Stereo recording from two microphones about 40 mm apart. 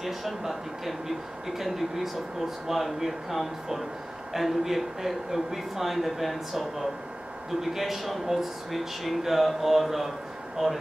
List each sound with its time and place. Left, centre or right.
0.0 s speech: centre
7.6 s speech: centre